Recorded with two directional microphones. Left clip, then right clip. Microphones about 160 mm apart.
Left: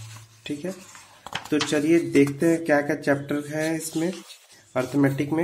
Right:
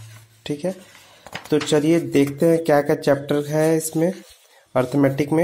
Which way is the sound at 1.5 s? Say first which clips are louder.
Right 4 dB; 30° right (ahead or behind).